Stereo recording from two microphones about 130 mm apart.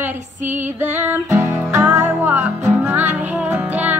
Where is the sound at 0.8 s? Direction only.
15° right (ahead or behind).